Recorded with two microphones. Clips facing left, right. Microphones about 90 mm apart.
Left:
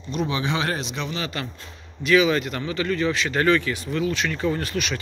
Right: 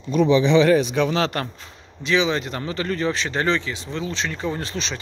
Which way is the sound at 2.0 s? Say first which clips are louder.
Left 2 dB; 25° right (ahead or behind).